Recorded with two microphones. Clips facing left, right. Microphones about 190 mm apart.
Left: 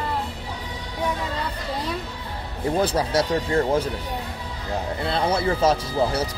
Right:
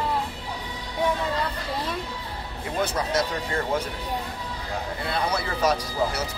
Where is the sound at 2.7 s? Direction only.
30° left (ahead or behind).